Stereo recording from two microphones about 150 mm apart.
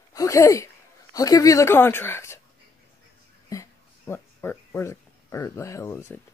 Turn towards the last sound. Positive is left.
turn(degrees=20)  # may be behind; listen again after turning